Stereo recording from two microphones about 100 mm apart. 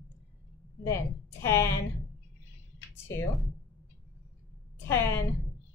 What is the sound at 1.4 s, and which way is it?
Speech, 25° left (ahead or behind).